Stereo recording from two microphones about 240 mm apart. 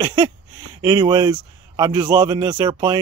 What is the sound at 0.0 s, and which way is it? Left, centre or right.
Speech, centre.